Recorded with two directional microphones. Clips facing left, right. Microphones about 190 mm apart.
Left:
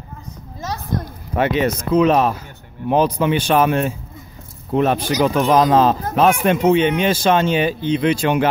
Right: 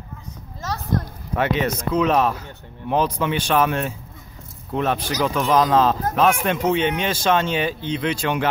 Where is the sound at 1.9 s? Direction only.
5° left (ahead or behind).